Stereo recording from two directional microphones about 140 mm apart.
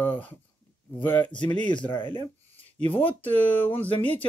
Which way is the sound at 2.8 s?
10° left (ahead or behind).